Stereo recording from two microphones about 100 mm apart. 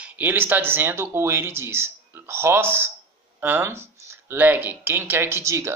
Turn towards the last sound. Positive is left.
turn(degrees=-25)  # may be behind; listen again after turning